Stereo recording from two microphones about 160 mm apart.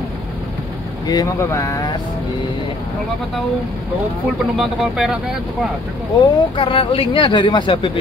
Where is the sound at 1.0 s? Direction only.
25° left (ahead or behind).